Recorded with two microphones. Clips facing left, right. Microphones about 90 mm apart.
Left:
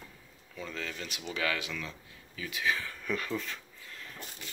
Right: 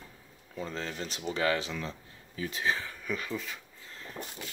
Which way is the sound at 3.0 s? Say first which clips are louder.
Left 2 dB; 5° right (ahead or behind).